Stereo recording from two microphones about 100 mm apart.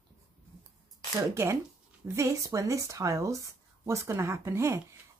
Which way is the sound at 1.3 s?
30° right (ahead or behind).